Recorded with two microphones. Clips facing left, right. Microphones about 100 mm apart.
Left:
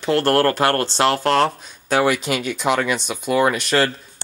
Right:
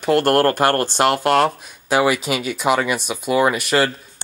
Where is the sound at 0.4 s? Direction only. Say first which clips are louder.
Right 1 dB; 40° right (ahead or behind).